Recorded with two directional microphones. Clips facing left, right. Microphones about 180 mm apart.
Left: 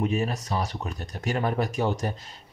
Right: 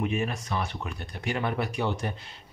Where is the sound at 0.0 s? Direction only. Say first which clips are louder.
Left 2 dB; 35° left (ahead or behind).